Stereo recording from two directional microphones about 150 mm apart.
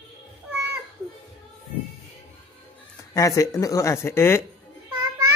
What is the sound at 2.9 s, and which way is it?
Speech, 20° left (ahead or behind).